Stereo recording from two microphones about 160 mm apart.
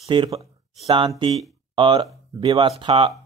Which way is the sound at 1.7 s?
25° right (ahead or behind).